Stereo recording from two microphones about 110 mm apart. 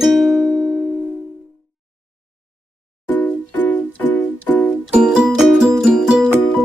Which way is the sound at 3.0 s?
15° left (ahead or behind).